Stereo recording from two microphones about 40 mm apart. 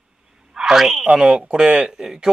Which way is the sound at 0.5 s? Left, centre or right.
Centre.